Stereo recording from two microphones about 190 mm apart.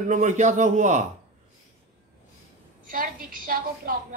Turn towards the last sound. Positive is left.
turn(degrees=-50)  # may be behind; listen again after turning